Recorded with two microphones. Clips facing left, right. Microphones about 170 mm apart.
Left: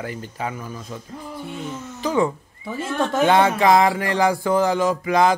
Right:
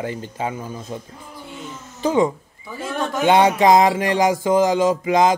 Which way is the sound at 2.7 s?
25° left (ahead or behind).